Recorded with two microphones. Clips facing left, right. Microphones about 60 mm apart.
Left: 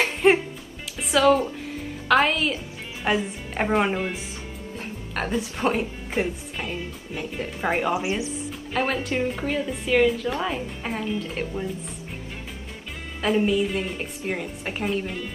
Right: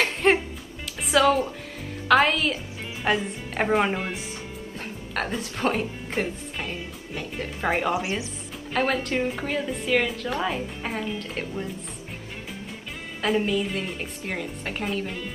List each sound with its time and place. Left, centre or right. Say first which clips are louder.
0.0 s music: left 2 dB; centre
1.0 s speech: left 1 dB; centre
7.9 s speech: left 2 dB; left
8.7 s speech: right 1 dB; centre
13.2 s speech: left 2 dB; centre